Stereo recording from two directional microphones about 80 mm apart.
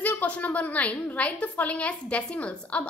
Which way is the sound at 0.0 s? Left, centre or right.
Left.